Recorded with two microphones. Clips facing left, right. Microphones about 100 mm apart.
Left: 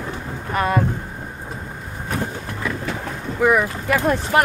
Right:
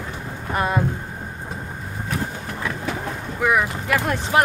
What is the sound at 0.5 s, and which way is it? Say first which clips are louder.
Speech: left 2 dB; 15° right (ahead or behind).